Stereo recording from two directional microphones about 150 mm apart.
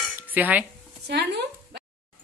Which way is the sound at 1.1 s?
90° right.